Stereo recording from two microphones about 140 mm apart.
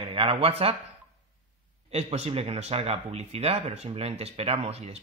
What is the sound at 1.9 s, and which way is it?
Speech, 50° right (ahead or behind).